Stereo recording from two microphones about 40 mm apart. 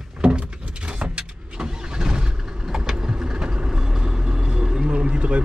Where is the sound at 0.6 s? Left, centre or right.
Right.